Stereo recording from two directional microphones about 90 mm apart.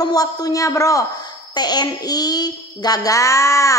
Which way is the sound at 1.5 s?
50° left (ahead or behind).